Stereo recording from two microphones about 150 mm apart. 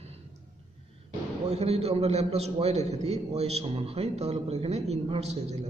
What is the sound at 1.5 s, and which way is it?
A man's voice, 45° right (ahead or behind).